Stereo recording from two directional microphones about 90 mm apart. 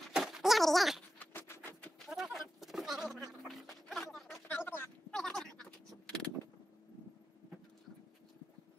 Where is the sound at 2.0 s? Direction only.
Centre (ahead or behind).